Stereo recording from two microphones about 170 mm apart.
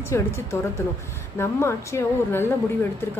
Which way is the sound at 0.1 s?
15° left (ahead or behind).